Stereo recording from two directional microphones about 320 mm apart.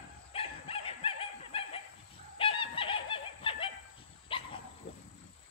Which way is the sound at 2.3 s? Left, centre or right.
Centre.